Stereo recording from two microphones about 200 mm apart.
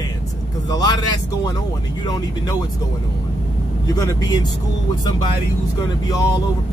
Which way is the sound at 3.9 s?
20° left (ahead or behind).